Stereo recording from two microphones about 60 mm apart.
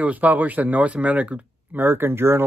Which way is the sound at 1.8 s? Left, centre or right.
Right.